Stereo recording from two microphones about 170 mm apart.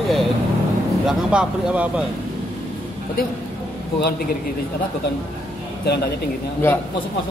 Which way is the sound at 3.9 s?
70° left (ahead or behind).